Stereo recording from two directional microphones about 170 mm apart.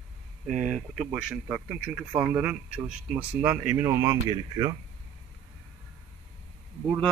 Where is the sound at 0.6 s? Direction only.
5° right (ahead or behind); by 4.7 s 25° right (ahead or behind).